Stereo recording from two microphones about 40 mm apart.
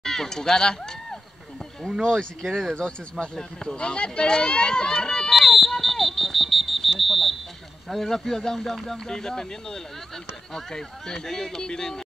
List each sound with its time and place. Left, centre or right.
0.0 s speech: centre
2.4 s speech: centre
5.4 s smoke detector: centre
7.0 s a sound: centre
7.9 s speech: centre